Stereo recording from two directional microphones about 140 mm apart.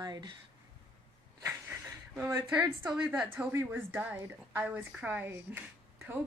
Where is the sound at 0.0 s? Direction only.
30° right (ahead or behind).